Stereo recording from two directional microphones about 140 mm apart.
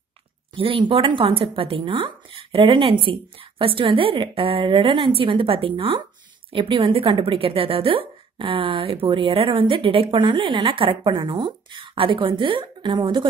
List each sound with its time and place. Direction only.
0.6 s a woman's voice: 40° right (ahead or behind)